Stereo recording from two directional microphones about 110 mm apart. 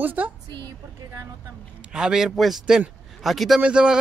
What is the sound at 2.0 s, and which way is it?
Speech, 5° right (ahead or behind).